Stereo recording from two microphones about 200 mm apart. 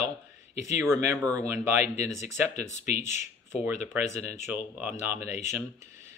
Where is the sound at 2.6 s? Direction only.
35° left (ahead or behind).